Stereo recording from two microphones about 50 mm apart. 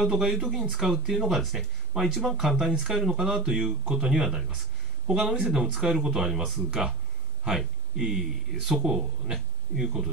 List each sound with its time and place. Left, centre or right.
0.0 s speech: centre
3.8 s speech: right
4.1 s speech: centre
7.5 s speech: centre